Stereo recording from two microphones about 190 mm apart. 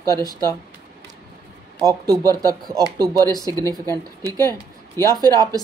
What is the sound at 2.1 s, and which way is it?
Speech, 20° right (ahead or behind).